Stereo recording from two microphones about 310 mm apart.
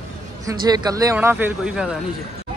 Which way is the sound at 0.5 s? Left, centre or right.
Centre.